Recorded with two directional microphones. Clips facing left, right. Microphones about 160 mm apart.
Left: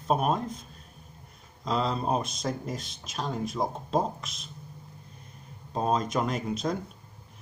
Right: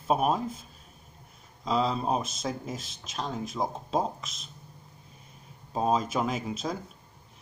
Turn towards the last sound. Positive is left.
turn(degrees=0)  # may be behind; listen again after turning